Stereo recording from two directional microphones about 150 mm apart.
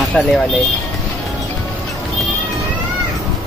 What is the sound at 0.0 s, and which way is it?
Speech, centre (ahead or behind).